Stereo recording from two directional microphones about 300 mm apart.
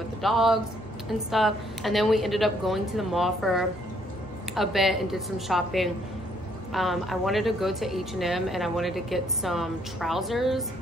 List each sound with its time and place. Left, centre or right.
0.2 s a woman's voice: centre